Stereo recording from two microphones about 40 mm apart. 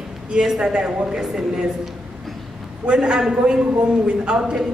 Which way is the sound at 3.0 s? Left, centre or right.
Centre.